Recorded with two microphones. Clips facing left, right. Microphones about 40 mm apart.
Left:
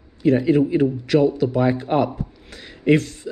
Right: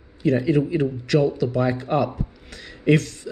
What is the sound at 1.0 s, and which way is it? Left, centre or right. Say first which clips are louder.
A man's voice: left 3 dB; centre.